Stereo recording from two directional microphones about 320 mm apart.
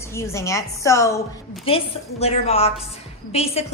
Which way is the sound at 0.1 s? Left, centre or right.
Centre.